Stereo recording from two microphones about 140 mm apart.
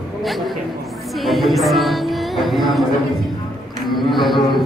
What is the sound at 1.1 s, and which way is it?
Music, centre (ahead or behind).